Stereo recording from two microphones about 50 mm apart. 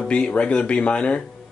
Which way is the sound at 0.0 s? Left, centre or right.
Left.